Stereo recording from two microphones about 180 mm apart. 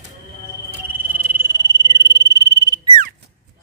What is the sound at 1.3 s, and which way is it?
Frog, 20° right (ahead or behind).